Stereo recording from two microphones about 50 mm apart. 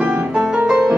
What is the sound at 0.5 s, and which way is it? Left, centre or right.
Music, right.